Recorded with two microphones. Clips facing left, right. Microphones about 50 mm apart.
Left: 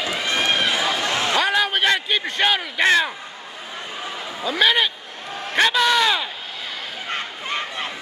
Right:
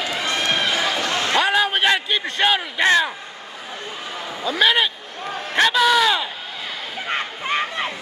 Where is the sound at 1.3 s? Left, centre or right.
Centre.